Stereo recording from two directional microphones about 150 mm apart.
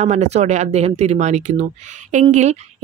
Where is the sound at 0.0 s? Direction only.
45° right (ahead or behind).